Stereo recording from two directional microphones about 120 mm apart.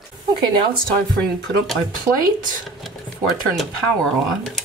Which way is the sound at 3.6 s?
Centre (ahead or behind).